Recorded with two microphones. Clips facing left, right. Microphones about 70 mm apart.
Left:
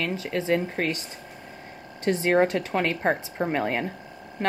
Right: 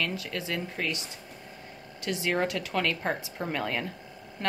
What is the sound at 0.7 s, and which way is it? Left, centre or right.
Speech, left.